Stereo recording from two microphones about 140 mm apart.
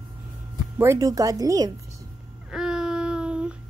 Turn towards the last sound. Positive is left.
turn(degrees=-5)  # may be behind; listen again after turning